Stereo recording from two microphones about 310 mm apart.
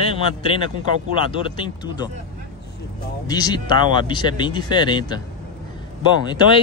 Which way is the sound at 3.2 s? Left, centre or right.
Centre.